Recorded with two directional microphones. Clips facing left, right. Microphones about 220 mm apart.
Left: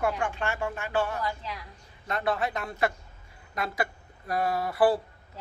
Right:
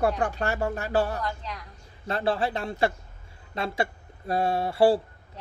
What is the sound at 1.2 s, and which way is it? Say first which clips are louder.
Speech: even; 5° left (ahead or behind).